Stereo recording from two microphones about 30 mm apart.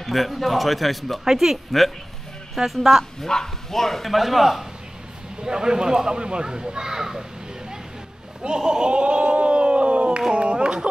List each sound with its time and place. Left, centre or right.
0.0 s a man's voice: centre
1.2 s a man's voice: centre
3.3 s speech: left
3.7 s a man's voice: centre
4.1 s a man's voice: centre
5.4 s speech: right
8.4 s a sound: right